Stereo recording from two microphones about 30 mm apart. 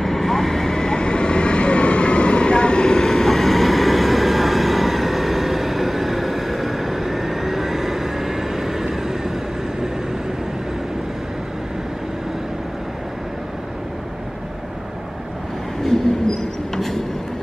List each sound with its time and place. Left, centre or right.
0.0 s vehicle: centre
3.3 s vehicle: centre
16.7 s a sound: centre